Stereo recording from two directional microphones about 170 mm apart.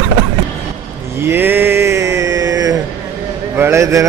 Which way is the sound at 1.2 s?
10° right (ahead or behind).